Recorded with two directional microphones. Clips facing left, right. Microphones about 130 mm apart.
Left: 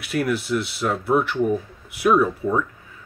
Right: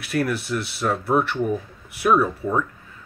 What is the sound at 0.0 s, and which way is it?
Speech, centre (ahead or behind).